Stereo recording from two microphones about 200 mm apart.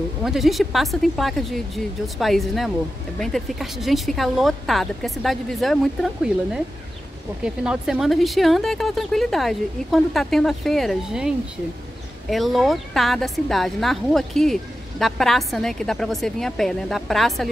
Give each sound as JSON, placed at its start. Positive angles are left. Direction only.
{"t": 0.2, "sound": "a woman's voice", "side_deg": 0}